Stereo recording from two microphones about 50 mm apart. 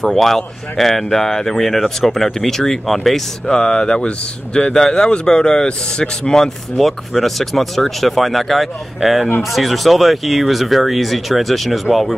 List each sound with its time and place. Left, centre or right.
0.0 s speech: centre
3.4 s speech: centre